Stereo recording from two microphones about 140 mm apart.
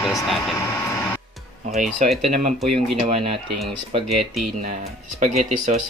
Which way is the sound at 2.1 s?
Centre (ahead or behind).